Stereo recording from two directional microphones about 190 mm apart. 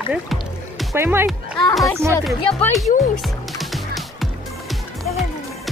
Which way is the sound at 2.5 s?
5° left (ahead or behind).